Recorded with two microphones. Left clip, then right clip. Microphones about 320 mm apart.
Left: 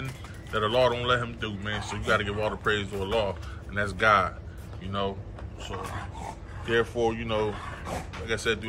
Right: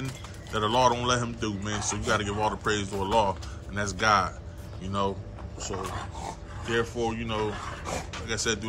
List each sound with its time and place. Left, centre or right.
0.5 s speech: centre
6.7 s speech: centre